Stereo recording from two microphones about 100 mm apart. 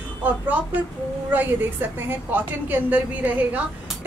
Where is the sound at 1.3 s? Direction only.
20° right (ahead or behind).